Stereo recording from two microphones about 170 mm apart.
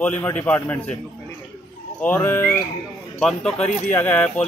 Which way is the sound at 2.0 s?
15° left (ahead or behind).